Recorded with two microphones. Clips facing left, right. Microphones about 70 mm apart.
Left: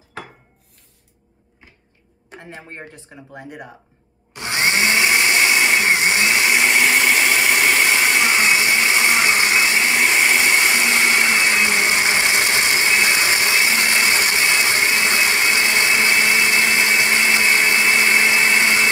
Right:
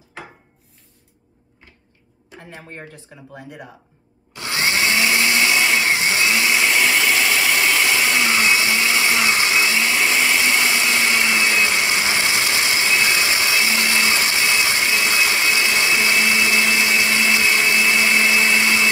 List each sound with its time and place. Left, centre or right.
2.3 s speech: left
4.3 s blender: left